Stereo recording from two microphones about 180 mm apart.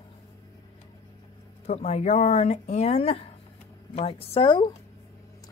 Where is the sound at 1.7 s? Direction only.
35° left (ahead or behind).